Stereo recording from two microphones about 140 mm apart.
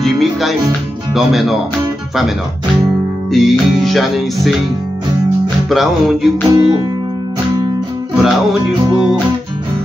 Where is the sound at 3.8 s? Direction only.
Centre (ahead or behind).